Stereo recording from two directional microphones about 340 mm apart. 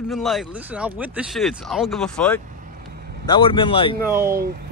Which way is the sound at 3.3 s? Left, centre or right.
Centre.